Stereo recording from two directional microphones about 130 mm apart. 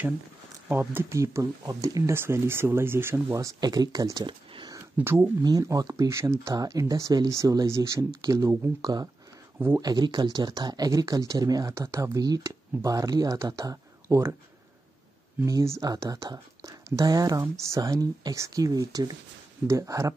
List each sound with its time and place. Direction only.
0.7 s speech: 15° right (ahead or behind); by 4.7 s 35° right (ahead or behind)
4.9 s speech: 15° right (ahead or behind)
5.4 s speech: 30° right (ahead or behind)
15.4 s speech: 25° right (ahead or behind)